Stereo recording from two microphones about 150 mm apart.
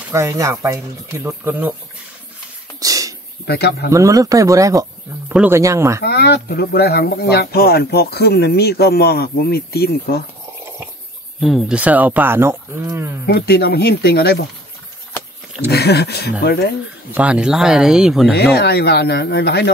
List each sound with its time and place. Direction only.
0.1 s speech: 20° right (ahead or behind)
2.8 s a sound: 25° right (ahead or behind)
3.4 s speech: 90° left
3.9 s speech: 20° right (ahead or behind)
5.3 s speech: 10° right (ahead or behind)
5.6 s speech: 20° right (ahead or behind)
6.0 s speech: 90° left
11.4 s speech: 5° right (ahead or behind)
13.3 s speech: 90° left
15.7 s speech: 90° left
17.1 s speech: 10° right (ahead or behind)
18.3 s speech: 90° left